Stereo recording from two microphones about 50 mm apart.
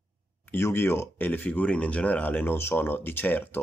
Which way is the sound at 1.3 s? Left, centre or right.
Left.